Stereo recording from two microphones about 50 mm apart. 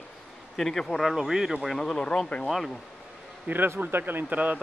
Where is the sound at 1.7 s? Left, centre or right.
Centre.